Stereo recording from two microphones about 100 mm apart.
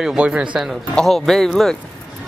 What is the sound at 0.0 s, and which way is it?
A woman's voice, 5° right (ahead or behind).